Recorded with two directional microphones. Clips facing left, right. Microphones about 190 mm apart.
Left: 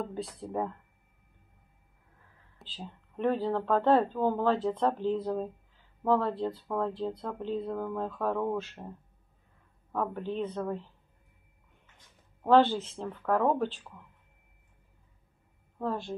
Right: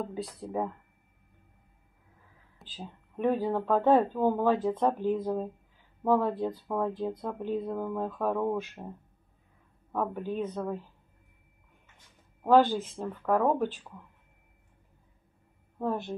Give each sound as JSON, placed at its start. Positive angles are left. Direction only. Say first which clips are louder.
{"t": 0.0, "sound": "speech", "louder": "right 1 dB", "side_deg": -5}
{"t": 2.7, "sound": "speech", "louder": "right 1 dB", "side_deg": -10}
{"t": 9.9, "sound": "speech", "louder": "right 1 dB", "side_deg": -10}
{"t": 12.4, "sound": "speech", "louder": "even", "side_deg": -15}
{"t": 15.8, "sound": "a woman's voice", "louder": "right 2 dB", "side_deg": -20}